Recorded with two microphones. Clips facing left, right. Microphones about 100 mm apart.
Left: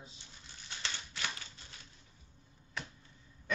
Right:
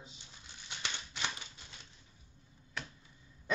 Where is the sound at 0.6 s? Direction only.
15° right (ahead or behind).